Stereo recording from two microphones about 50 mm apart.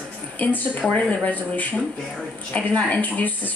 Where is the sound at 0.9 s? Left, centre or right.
Left.